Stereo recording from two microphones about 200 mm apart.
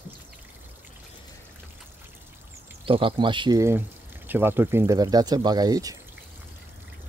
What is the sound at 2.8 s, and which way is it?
Speech, 25° right (ahead or behind).